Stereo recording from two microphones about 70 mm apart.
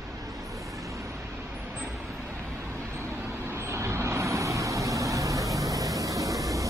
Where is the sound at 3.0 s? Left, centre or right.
Right.